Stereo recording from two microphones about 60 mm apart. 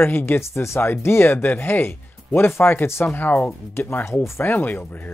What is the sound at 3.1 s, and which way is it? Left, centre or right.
Speech, left.